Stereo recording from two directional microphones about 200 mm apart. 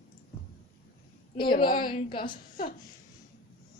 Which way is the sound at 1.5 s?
45° left (ahead or behind).